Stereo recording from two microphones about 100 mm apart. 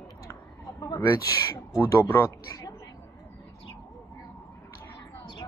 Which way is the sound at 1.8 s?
25° left (ahead or behind).